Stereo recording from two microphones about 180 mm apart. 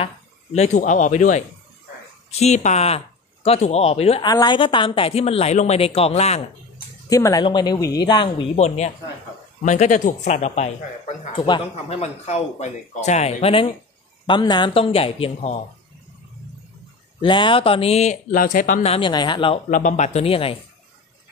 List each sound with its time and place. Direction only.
0.0 s speech: 35° left (ahead or behind)
4.3 s speech: 25° left (ahead or behind)
7.1 s speech: 20° left (ahead or behind); by 11.1 s 40° left (ahead or behind)
11.3 s speech: 25° left (ahead or behind)
12.0 s speech: 40° left (ahead or behind)
17.2 s speech: 30° left (ahead or behind)
19.7 s speech: 45° left (ahead or behind)